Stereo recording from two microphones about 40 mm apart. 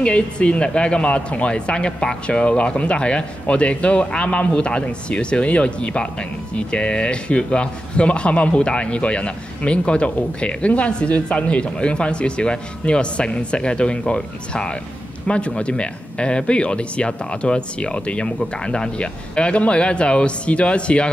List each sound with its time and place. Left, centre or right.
0.0 s speech: left